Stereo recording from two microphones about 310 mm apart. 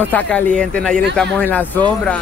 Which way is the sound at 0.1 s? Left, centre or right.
Centre.